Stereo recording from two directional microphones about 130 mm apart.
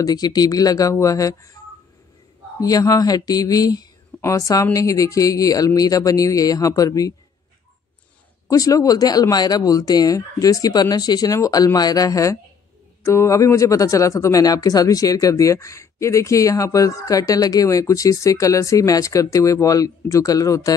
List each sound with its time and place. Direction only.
0.0 s speech: 30° left (ahead or behind)
2.6 s speech: 30° left (ahead or behind)
8.5 s speech: 25° left (ahead or behind)